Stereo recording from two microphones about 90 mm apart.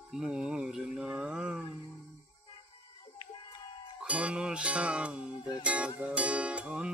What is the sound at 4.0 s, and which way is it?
Music, 15° right (ahead or behind).